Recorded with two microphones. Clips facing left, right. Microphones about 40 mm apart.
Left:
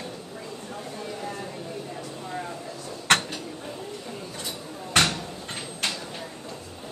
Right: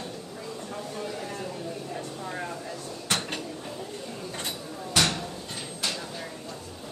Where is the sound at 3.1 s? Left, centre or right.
Left.